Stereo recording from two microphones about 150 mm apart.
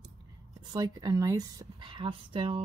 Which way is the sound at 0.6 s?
30° right (ahead or behind).